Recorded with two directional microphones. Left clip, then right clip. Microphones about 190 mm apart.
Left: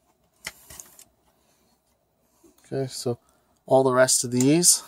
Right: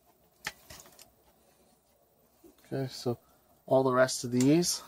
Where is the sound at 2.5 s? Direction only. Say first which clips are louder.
Left 7 dB; 60° left (ahead or behind).